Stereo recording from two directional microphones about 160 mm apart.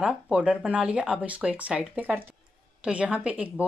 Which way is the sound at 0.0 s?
5° right (ahead or behind).